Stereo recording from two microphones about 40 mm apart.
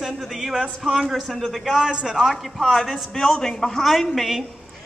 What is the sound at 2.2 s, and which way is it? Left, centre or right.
Speech, centre.